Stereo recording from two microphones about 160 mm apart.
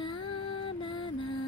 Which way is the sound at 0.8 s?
30° left (ahead or behind).